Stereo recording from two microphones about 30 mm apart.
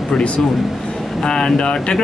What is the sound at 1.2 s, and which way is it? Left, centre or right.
Speech, left.